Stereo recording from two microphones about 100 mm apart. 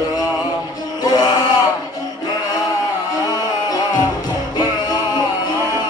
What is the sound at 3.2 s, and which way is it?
Music, 40° left (ahead or behind).